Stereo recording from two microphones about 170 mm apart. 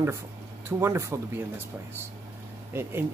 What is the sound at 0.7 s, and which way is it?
Speech, 15° right (ahead or behind).